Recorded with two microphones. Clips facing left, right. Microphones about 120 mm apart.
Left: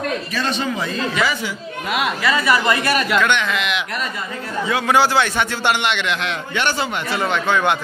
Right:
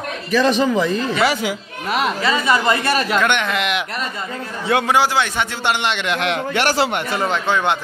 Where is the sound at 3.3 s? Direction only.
55° right (ahead or behind).